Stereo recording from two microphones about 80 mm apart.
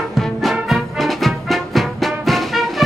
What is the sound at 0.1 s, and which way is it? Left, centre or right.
Music, centre.